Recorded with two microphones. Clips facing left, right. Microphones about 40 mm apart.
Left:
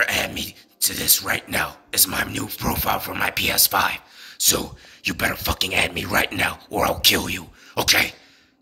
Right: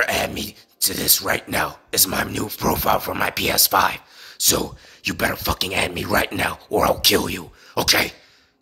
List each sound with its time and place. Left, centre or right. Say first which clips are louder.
0.0 s speech: right 1 dB; left